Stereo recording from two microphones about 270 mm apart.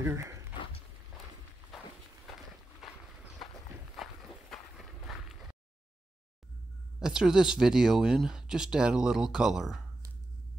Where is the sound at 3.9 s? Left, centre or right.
Centre.